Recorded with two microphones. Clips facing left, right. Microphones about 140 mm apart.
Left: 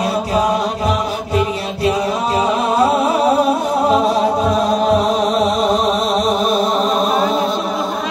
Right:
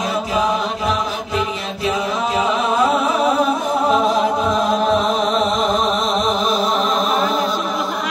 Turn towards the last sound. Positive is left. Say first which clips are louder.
# left 3 dB
turn(degrees=25)  # may be behind; listen again after turning